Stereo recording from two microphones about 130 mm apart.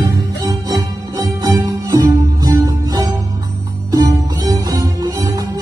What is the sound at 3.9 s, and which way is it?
Music, 30° right (ahead or behind).